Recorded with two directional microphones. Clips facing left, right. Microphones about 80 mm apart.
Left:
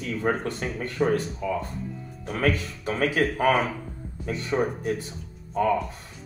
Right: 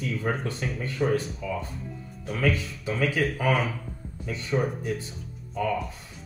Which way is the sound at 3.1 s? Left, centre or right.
Centre.